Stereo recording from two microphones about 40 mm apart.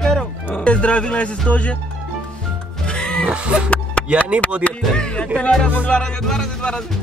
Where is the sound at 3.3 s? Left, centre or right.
Right.